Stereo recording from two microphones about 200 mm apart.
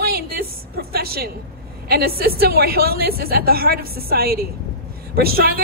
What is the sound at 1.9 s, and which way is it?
Speech, 50° right (ahead or behind).